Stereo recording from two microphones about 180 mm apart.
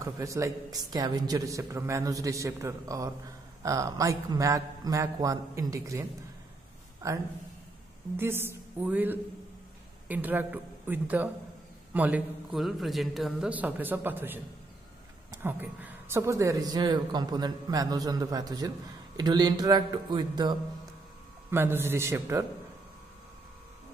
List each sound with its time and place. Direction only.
0.0 s a man's voice: 15° right (ahead or behind)
7.0 s a man's voice: 15° right (ahead or behind)
21.5 s a man's voice: 10° right (ahead or behind)